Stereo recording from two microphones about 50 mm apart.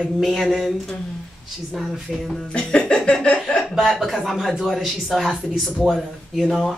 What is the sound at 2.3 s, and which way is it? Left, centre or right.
Speech, centre.